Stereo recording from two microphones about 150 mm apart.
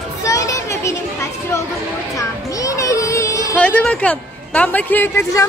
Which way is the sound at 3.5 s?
10° left (ahead or behind).